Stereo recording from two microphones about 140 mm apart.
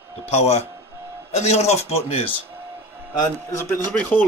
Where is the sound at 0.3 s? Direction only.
50° left (ahead or behind).